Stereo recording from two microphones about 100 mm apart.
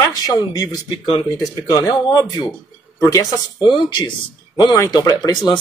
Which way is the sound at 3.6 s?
50° left (ahead or behind).